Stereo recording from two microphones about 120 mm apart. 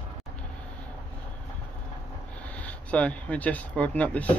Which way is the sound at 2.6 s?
10° left (ahead or behind).